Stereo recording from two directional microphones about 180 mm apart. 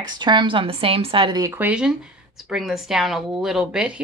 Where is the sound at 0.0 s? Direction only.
25° right (ahead or behind).